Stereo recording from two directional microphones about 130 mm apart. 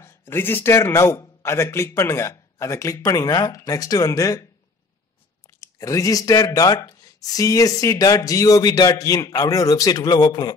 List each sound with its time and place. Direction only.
0.0 s speech: 15° left (ahead or behind)
5.6 s speech: 25° left (ahead or behind)